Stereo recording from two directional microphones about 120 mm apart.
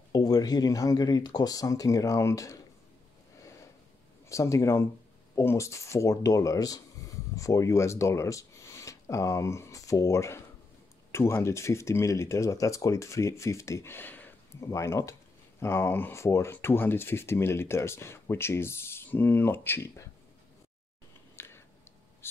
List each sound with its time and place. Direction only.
0.1 s speech: 35° left (ahead or behind)
4.3 s speech: 25° left (ahead or behind)
21.4 s a sound: 20° left (ahead or behind)